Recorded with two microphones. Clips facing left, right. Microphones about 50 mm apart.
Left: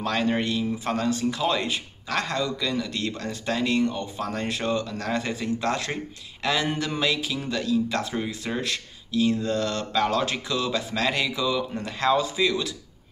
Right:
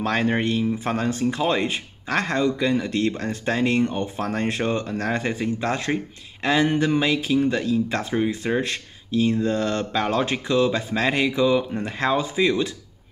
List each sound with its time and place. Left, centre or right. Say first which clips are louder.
0.0 s speech: right 3 dB; right